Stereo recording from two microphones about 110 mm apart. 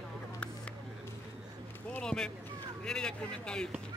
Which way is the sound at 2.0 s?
10° left (ahead or behind).